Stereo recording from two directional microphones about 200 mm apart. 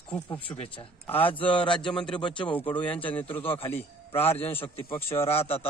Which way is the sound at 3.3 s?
25° left (ahead or behind).